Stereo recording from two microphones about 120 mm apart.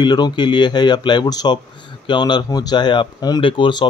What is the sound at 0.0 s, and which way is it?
Speech, 35° left (ahead or behind).